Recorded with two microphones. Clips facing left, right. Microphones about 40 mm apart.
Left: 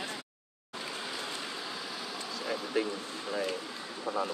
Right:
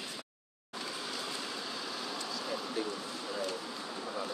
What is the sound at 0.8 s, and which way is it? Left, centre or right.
Vehicle, centre.